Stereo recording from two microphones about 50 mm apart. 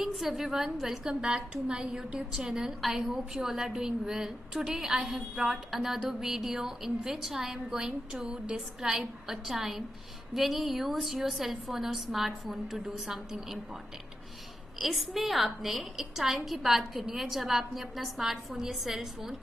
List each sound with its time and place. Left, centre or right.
0.0 s a woman's voice: centre
1.2 s a woman's voice: centre
14.8 s a woman's voice: centre